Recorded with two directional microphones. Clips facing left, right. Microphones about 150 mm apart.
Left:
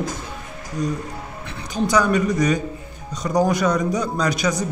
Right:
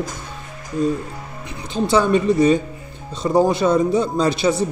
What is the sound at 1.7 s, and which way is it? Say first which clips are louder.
A man's voice: right 2 dB; 25° right (ahead or behind).